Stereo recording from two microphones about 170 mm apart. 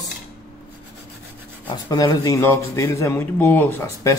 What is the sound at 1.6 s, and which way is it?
Speech, 25° left (ahead or behind).